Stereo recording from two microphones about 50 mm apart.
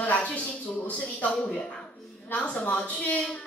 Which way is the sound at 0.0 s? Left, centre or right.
Left.